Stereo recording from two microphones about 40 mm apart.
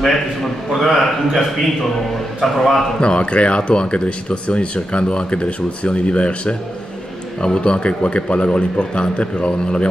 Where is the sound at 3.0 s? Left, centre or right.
Left.